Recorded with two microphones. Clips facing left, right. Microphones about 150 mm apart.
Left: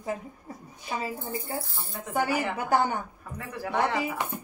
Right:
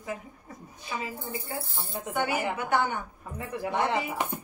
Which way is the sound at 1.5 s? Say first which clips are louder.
Left 1 dB; 30° left (ahead or behind).